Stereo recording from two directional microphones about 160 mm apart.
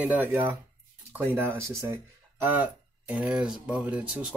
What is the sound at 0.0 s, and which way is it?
Speech, 10° right (ahead or behind).